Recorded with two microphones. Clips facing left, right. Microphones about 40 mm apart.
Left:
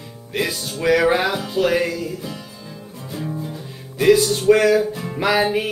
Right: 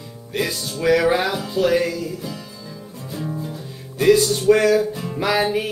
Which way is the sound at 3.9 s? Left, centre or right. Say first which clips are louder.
Left 1 dB; centre.